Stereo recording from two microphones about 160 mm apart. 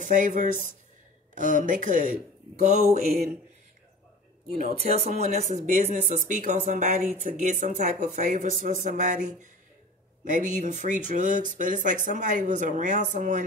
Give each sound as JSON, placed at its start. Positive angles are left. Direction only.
{"t": 0.0, "sound": "speech", "side_deg": -50}
{"t": 4.6, "sound": "speech", "side_deg": -55}